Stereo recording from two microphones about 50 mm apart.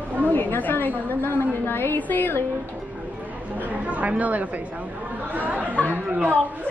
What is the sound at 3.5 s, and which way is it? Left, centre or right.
Speech, right.